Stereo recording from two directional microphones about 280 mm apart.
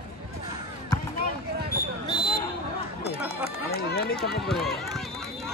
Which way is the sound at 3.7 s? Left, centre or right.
Left.